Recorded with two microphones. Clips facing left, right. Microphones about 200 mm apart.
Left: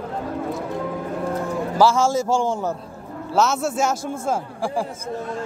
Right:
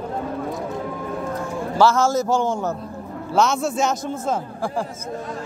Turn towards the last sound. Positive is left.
turn(degrees=10)  # may be behind; listen again after turning